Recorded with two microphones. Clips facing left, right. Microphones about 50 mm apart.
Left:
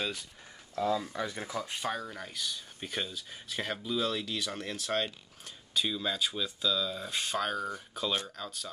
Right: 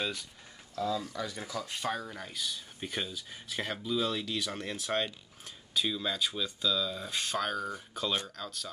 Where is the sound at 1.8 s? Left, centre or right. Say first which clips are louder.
Even; centre.